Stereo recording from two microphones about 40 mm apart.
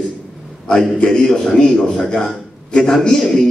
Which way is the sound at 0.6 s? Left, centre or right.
Centre.